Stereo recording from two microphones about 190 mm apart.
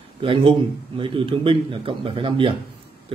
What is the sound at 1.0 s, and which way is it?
Speech, 25° right (ahead or behind).